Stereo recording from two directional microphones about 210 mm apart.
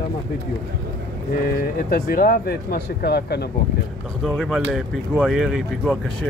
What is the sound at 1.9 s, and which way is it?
Speech, 45° left (ahead or behind).